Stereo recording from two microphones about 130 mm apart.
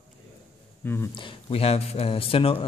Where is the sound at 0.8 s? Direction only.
15° left (ahead or behind).